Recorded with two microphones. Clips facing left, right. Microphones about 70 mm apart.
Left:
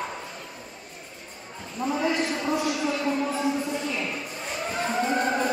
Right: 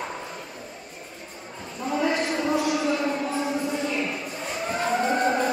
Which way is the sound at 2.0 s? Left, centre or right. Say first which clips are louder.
Right 3 dB; right.